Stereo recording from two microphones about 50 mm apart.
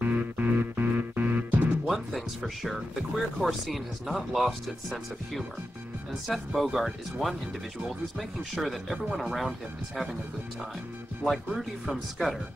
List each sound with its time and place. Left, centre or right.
0.0 s music: right
1.9 s music: centre
3.3 s speech: centre
11.2 s speech: centre